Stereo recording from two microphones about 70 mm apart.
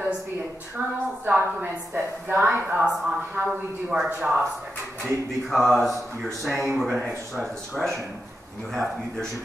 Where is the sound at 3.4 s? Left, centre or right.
Centre.